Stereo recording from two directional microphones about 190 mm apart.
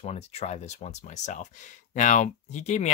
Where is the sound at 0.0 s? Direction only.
35° left (ahead or behind).